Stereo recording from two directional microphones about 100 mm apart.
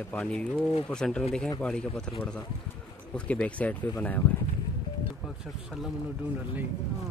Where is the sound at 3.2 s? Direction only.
10° left (ahead or behind).